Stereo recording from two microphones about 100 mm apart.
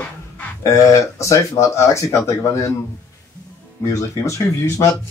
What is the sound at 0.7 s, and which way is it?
Speech, 30° left (ahead or behind).